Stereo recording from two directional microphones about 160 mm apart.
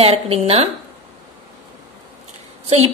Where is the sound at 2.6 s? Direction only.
40° right (ahead or behind).